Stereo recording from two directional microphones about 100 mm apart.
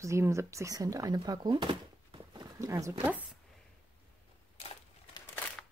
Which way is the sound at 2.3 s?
35° right (ahead or behind).